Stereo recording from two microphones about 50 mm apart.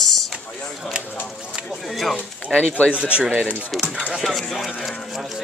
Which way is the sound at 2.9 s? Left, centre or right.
Right.